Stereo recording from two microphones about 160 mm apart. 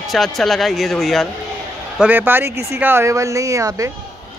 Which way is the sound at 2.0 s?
10° right (ahead or behind).